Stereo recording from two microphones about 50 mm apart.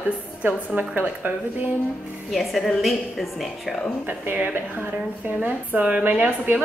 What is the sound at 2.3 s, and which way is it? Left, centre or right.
A woman's voice, centre.